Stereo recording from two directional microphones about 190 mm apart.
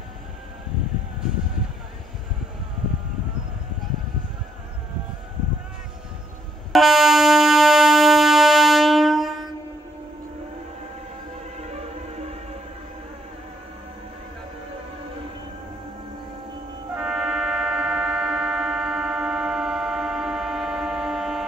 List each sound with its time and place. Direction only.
6.7 s music: centre (ahead or behind)
11.6 s music: 35° right (ahead or behind)
16.9 s brass instrument: 5° right (ahead or behind)